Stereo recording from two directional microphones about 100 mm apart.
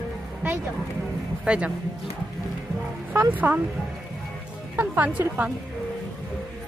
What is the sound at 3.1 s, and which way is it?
Speech, 20° right (ahead or behind).